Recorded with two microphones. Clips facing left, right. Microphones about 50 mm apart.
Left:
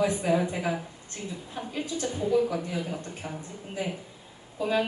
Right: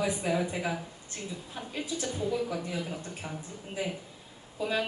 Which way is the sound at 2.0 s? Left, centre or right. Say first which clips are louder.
Left 7 dB; centre.